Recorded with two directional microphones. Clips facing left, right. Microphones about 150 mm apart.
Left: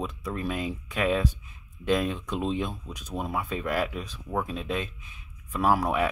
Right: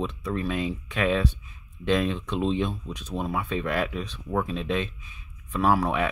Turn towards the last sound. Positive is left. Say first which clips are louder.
# right 1 dB
turn(degrees=10)  # may be behind; listen again after turning